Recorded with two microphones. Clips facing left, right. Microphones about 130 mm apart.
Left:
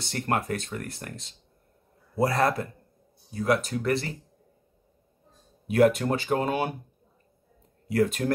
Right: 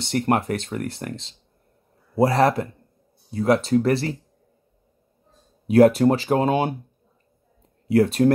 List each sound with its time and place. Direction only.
0.0 s speech: 25° right (ahead or behind)
5.7 s speech: 35° right (ahead or behind)
7.9 s speech: 30° right (ahead or behind)